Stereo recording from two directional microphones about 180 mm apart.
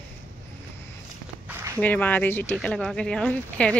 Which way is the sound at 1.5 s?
10° right (ahead or behind).